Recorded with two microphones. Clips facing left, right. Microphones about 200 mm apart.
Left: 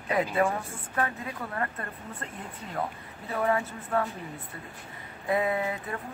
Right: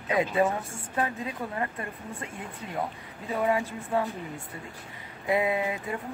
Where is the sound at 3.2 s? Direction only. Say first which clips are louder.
Right 1 dB; 15° right (ahead or behind).